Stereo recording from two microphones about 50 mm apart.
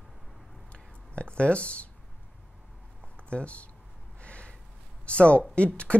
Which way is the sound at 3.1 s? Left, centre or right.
Left.